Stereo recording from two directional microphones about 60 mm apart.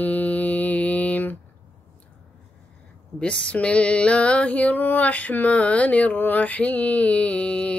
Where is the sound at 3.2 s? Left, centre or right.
Centre.